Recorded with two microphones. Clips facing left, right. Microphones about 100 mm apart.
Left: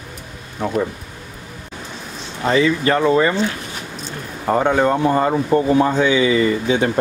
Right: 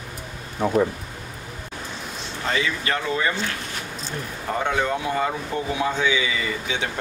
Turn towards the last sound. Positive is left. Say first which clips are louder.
# left 10 dB
turn(degrees=40)  # may be behind; listen again after turning